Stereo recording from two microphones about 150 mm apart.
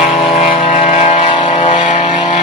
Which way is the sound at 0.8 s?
50° left (ahead or behind).